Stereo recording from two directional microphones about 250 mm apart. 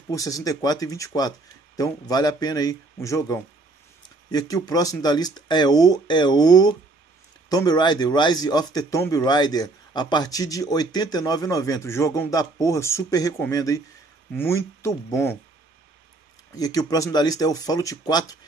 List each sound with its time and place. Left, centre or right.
0.1 s speech: centre
16.5 s speech: centre